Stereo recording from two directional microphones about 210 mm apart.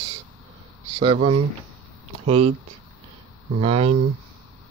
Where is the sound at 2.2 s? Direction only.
30° right (ahead or behind).